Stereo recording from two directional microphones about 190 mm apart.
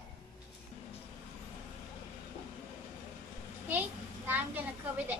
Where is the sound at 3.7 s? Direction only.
10° right (ahead or behind).